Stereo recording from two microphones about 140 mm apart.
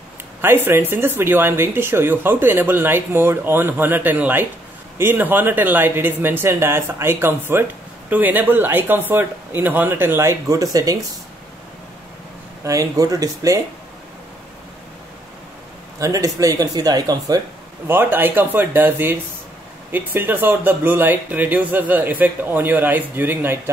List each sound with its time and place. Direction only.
0.4 s speech: 15° right (ahead or behind)
12.6 s speech: 25° right (ahead or behind)
16.0 s speech: 25° right (ahead or behind)
17.8 s speech: 15° right (ahead or behind)